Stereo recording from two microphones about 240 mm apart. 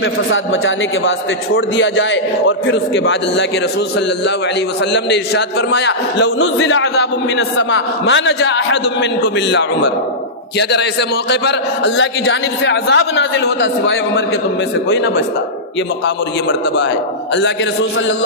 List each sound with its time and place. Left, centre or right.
0.3 s a man's voice: left
4.9 s a man's voice: left